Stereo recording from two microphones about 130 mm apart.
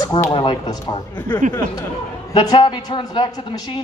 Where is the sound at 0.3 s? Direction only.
35° left (ahead or behind).